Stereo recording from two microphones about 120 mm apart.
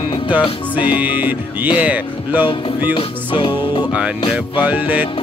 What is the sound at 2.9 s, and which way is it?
Music, 40° left (ahead or behind).